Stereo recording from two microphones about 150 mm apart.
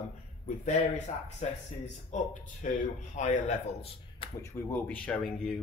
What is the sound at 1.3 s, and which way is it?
Speech, 50° left (ahead or behind).